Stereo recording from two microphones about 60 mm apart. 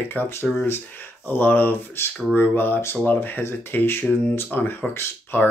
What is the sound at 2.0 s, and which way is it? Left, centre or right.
Speech, left.